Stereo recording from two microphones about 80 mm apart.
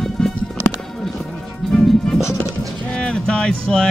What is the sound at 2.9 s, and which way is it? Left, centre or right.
Speech, centre.